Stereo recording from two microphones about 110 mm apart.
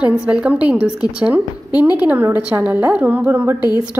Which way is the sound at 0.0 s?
10° right (ahead or behind).